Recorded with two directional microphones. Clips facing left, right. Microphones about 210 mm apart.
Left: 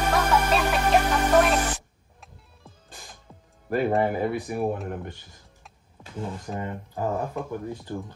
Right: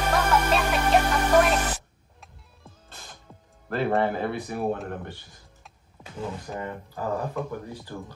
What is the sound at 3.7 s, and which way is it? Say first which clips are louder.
Speech: left 1 dB; 15° left (ahead or behind).